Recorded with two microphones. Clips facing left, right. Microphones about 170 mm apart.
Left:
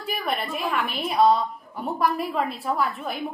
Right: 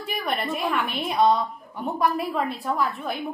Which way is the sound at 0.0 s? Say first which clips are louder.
Even; centre (ahead or behind).